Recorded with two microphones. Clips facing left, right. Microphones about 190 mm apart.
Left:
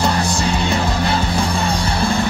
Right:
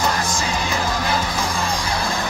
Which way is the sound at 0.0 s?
35° left (ahead or behind).